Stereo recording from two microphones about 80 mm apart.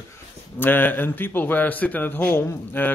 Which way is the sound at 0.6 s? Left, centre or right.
Left.